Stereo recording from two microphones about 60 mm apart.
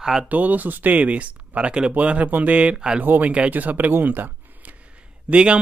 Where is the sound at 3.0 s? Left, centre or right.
Right.